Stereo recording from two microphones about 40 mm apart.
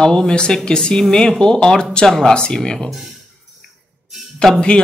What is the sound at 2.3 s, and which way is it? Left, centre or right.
Speech, left.